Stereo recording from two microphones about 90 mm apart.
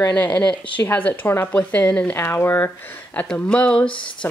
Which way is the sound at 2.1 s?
25° left (ahead or behind).